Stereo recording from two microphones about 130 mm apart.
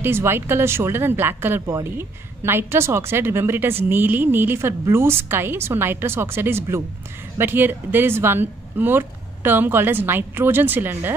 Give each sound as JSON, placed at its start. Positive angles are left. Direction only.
{"t": 0.0, "sound": "speech", "side_deg": -20}